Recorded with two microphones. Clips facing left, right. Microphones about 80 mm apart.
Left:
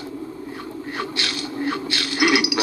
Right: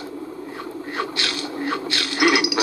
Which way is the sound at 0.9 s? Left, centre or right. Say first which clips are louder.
Right 2 dB; right.